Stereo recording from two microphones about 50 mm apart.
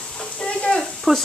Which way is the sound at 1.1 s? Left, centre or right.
Centre.